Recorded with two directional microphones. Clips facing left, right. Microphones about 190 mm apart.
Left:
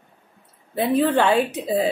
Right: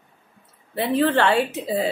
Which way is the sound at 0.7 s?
15° left (ahead or behind).